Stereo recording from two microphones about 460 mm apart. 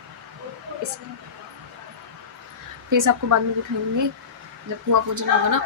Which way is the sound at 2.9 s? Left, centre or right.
Right.